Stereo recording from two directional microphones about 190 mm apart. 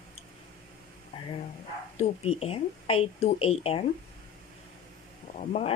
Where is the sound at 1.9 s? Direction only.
35° left (ahead or behind).